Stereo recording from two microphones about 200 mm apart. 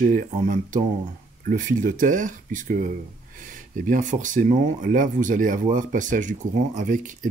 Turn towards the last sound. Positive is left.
turn(degrees=-40)  # may be behind; listen again after turning